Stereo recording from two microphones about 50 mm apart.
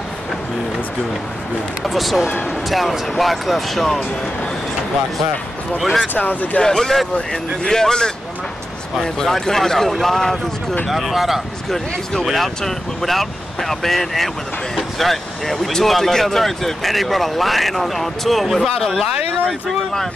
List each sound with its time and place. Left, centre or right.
1.9 s speech: centre
5.8 s speech: centre
6.1 s speech: left
6.6 s speech: centre